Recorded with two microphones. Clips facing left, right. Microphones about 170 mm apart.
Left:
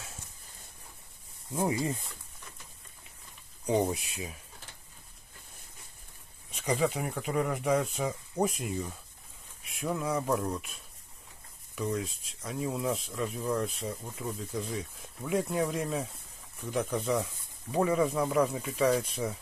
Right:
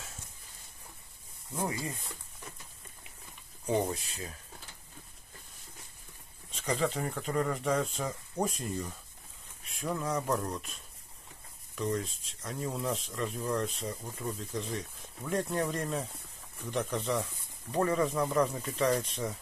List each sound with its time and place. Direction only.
1.5 s speech: 20° left (ahead or behind)
3.6 s speech: 15° left (ahead or behind)
6.5 s speech: 10° left (ahead or behind)